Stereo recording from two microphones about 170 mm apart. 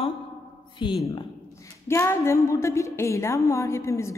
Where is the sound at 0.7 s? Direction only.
30° left (ahead or behind).